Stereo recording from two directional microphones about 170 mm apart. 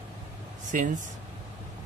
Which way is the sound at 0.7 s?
50° right (ahead or behind).